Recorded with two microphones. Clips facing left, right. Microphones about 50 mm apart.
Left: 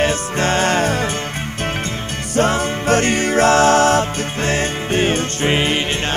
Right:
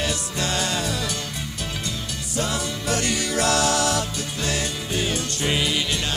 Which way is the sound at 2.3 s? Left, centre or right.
Left.